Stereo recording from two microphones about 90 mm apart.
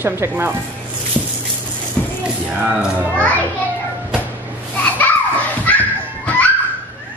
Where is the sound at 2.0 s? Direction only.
20° left (ahead or behind).